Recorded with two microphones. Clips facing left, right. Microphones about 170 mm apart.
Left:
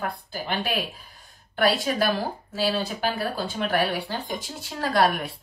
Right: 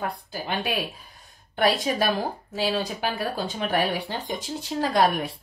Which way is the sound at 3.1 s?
20° right (ahead or behind).